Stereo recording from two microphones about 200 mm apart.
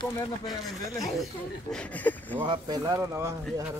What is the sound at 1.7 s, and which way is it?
Speech, 10° left (ahead or behind).